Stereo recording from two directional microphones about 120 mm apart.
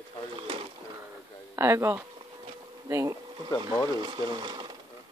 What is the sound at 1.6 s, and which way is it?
Speech, 25° right (ahead or behind).